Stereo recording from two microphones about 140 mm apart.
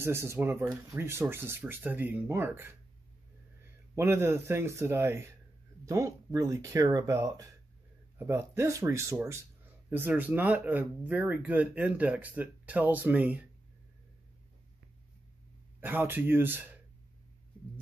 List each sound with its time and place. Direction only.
0.0 s speech: 20° right (ahead or behind)
3.9 s speech: 20° right (ahead or behind)
15.8 s speech: 15° right (ahead or behind)